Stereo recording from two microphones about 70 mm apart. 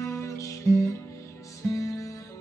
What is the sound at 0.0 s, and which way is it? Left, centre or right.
Music, left.